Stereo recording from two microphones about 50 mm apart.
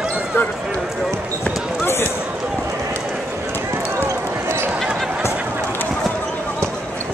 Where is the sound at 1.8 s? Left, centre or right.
Left.